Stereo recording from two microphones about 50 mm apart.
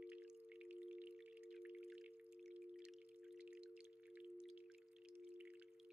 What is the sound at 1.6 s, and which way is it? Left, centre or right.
Drip, right.